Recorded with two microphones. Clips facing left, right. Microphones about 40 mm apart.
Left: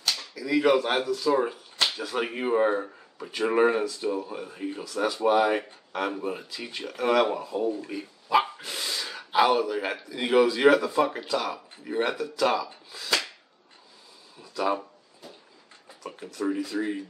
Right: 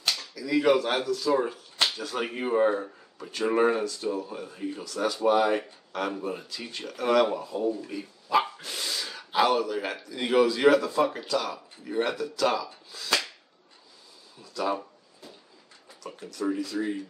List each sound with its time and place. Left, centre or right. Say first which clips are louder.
0.3 s speech: left 1 dB; centre
14.4 s a sound: left 2 dB; centre
16.0 s speech: left 1 dB; centre